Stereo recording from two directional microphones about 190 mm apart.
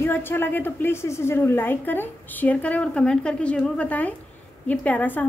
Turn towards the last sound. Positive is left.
turn(degrees=10)  # may be behind; listen again after turning